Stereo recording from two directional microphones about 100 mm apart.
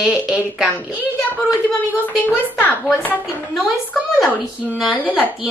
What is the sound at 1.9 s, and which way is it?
Speech, 20° left (ahead or behind).